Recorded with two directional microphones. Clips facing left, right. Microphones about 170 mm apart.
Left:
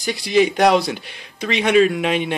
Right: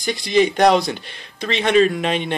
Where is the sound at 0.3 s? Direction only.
5° left (ahead or behind).